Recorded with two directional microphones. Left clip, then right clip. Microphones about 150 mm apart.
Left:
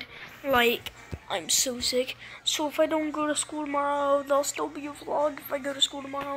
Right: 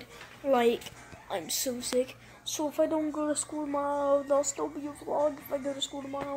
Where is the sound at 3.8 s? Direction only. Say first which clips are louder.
Left 2 dB; 35° left (ahead or behind).